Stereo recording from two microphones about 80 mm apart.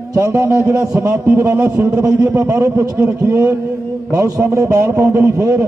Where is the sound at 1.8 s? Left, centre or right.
Right.